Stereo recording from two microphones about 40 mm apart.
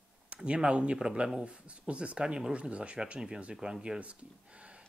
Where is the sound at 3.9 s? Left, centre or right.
Right.